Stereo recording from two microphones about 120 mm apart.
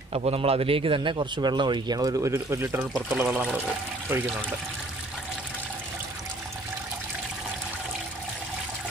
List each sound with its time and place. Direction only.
0.1 s a man's voice: 55° right (ahead or behind); by 2.9 s 20° right (ahead or behind)
3.3 s speech: 10° right (ahead or behind)